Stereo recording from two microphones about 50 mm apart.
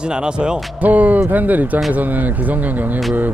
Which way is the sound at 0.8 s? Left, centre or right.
Right.